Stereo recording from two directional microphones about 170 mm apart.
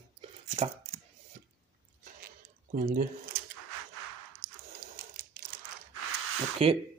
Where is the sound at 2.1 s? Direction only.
60° right (ahead or behind).